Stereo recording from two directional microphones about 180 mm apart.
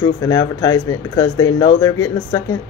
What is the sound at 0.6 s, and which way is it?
Speech, 20° left (ahead or behind).